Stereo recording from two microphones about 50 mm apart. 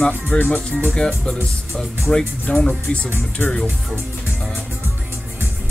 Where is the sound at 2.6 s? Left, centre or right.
Left.